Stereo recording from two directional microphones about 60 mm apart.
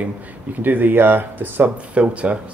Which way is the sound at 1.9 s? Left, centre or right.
Right.